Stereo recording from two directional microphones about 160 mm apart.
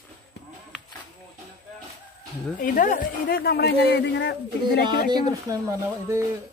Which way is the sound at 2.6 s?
55° left (ahead or behind).